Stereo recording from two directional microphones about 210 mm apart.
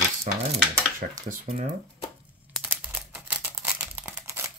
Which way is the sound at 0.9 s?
40° right (ahead or behind).